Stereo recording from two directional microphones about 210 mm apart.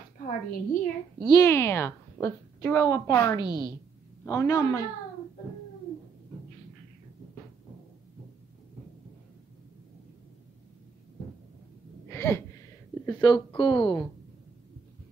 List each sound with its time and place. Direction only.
0.2 s a woman's voice: 40° left (ahead or behind)
1.2 s a woman's voice: 15° left (ahead or behind)
12.1 s gasp: 10° left (ahead or behind)
13.0 s a woman's voice: 20° left (ahead or behind)